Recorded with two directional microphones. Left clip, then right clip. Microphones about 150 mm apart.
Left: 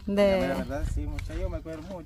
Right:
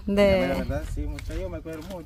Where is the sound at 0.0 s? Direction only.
15° right (ahead or behind).